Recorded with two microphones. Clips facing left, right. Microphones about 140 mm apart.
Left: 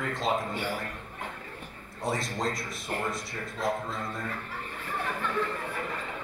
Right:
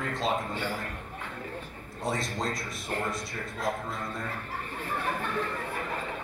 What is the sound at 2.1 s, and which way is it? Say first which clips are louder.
Speech: left 1 dB; 20° left (ahead or behind).